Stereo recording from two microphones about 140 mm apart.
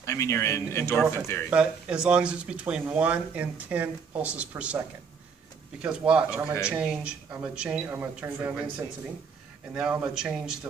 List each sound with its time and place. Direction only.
0.0 s speech: 20° left (ahead or behind)
1.5 s speech: 5° right (ahead or behind)
5.8 s a man's voice: 10° right (ahead or behind)